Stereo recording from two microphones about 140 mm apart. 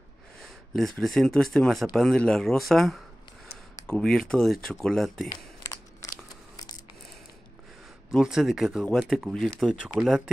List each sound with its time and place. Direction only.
0.4 s speech: centre (ahead or behind)
5.3 s a sound: 25° left (ahead or behind)
6.5 s scissors: 30° left (ahead or behind)
8.1 s speech: 5° right (ahead or behind)